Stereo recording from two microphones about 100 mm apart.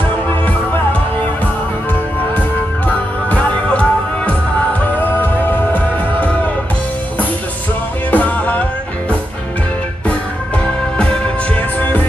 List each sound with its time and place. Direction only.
3.3 s music: 10° left (ahead or behind)
5.2 s music: 15° left (ahead or behind)
8.1 s music: 15° left (ahead or behind)
11.5 s music: 15° left (ahead or behind)